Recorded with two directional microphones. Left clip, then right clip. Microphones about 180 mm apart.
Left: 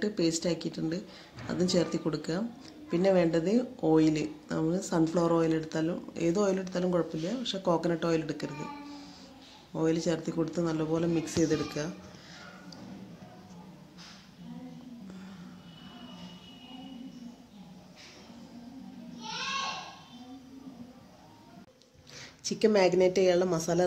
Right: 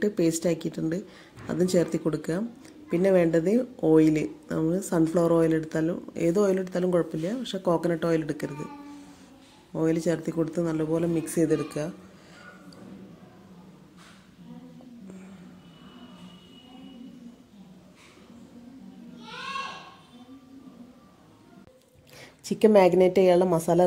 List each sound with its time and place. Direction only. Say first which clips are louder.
0.0 s speech: right 5 dB; 30° right (ahead or behind)
9.8 s speech: right 3 dB; 25° right (ahead or behind)
22.5 s speech: right 6 dB; 25° right (ahead or behind)